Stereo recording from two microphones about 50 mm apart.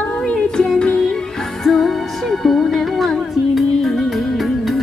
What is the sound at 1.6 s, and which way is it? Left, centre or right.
Music, centre.